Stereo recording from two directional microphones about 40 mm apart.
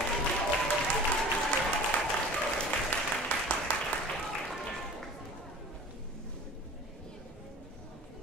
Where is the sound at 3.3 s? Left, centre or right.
Left.